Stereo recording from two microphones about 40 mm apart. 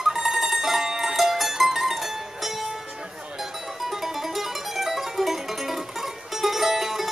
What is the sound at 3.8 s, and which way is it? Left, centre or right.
Music, centre.